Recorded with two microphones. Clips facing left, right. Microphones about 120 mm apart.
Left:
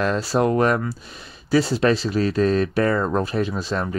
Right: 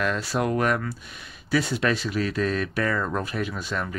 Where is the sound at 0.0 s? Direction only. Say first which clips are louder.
Left 5 dB; 30° left (ahead or behind).